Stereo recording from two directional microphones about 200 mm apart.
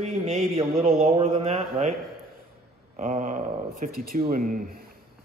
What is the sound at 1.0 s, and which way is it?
Speech, 30° right (ahead or behind).